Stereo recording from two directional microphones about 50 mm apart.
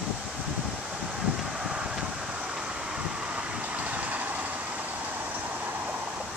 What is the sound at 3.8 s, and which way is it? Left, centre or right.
Vehicle, right.